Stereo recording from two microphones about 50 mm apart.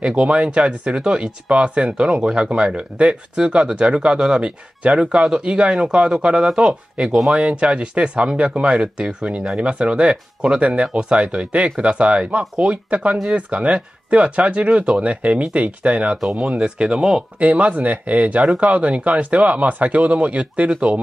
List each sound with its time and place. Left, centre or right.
0.0 s speech: right
17.4 s speech: right